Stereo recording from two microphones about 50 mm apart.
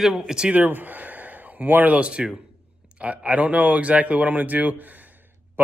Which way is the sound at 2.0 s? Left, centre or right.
Right.